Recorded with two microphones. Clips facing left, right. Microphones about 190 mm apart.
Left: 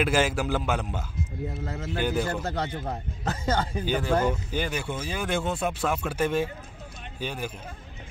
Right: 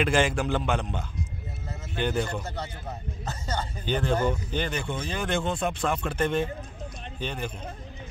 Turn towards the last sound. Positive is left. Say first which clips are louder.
# even
turn(degrees=5)  # may be behind; listen again after turning